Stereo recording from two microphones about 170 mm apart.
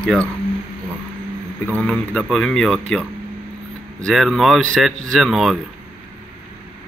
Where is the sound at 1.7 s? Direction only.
5° left (ahead or behind).